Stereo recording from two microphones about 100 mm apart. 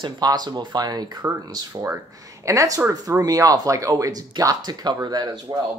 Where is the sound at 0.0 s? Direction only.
40° right (ahead or behind).